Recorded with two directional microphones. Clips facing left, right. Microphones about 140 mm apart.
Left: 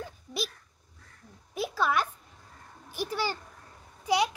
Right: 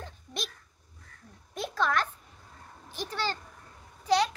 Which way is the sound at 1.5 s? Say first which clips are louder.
Left 1 dB; 5° left (ahead or behind).